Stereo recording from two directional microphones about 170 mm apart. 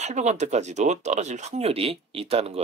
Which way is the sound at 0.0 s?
45° right (ahead or behind).